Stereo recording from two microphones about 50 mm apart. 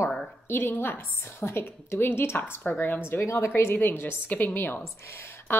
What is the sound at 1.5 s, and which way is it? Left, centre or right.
Speech, left.